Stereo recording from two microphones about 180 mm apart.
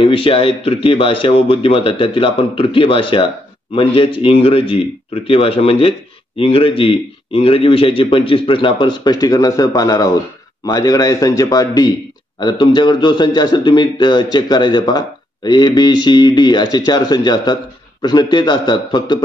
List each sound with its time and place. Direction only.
0.0 s a man's voice: 30° left (ahead or behind)